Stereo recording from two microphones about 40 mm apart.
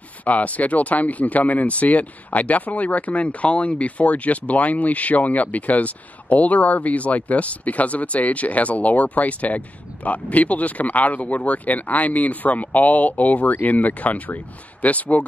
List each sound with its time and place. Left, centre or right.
0.2 s speech: left